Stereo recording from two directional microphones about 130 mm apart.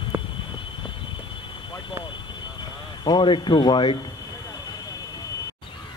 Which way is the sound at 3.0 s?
40° left (ahead or behind).